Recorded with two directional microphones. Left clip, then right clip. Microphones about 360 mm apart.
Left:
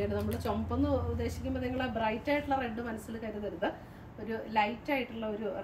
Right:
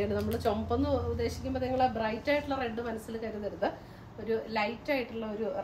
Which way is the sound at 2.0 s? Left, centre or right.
Centre.